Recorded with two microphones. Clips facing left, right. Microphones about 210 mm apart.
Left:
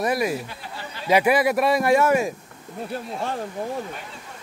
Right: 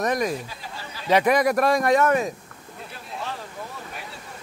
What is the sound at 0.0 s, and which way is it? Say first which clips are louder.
Speech: left 1 dB; 10° left (ahead or behind).